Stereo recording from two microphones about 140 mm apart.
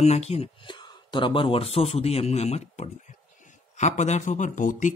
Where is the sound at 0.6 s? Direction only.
35° left (ahead or behind); by 4.9 s 65° left (ahead or behind).